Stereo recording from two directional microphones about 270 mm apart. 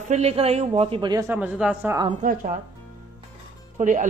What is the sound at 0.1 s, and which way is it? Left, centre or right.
Speech, right.